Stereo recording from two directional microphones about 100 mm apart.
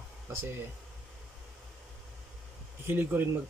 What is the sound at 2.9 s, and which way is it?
Speech, 20° right (ahead or behind).